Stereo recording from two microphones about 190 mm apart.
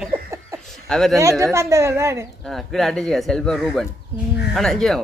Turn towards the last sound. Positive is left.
turn(degrees=0)  # may be behind; listen again after turning